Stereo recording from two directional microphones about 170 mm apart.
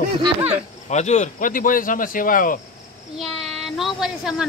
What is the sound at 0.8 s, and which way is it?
Speech, 45° left (ahead or behind).